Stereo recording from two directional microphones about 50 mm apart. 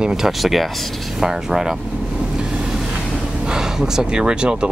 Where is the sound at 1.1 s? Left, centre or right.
Centre.